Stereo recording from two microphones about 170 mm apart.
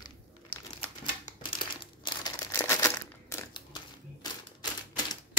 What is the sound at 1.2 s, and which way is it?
Crumpling, 25° left (ahead or behind).